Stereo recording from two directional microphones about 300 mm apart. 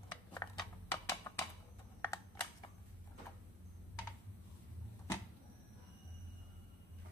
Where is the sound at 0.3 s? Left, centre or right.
Centre.